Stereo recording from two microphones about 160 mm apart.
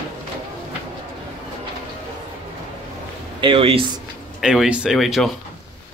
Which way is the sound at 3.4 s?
35° right (ahead or behind).